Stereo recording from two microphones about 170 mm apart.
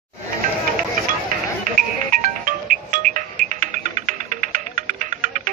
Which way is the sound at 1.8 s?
55° right (ahead or behind).